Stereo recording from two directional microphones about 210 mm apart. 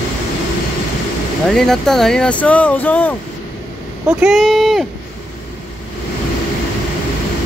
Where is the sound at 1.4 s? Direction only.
Centre (ahead or behind).